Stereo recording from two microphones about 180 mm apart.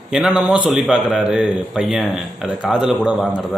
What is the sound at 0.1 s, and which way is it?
A man's voice, 5° right (ahead or behind).